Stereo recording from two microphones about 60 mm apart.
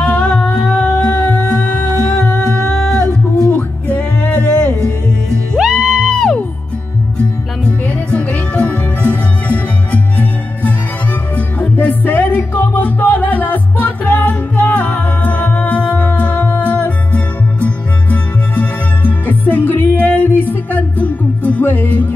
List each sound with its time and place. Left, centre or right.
0.0 s music: centre
1.4 s music: left
3.4 s music: left
5.6 s music: centre
7.6 s music: left